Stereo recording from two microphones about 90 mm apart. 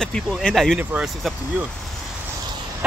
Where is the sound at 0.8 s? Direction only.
20° right (ahead or behind).